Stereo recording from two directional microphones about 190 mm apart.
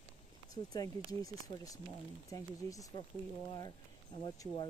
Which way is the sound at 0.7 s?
20° left (ahead or behind).